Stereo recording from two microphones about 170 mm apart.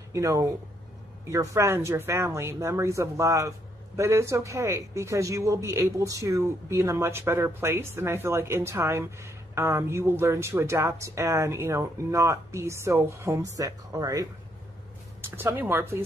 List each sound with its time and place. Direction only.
0.1 s speech: 20° right (ahead or behind)
15.2 s speech: 10° right (ahead or behind)